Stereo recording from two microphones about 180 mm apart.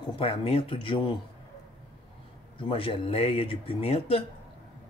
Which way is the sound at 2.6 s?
30° left (ahead or behind).